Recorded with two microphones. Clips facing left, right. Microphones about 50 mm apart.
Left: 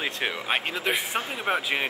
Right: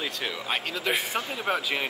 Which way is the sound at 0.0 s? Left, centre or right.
Left.